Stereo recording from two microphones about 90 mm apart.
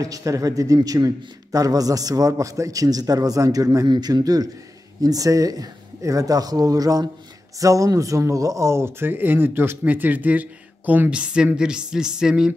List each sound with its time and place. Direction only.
0.0 s a man's voice: 40° right (ahead or behind); by 12.5 s 5° right (ahead or behind)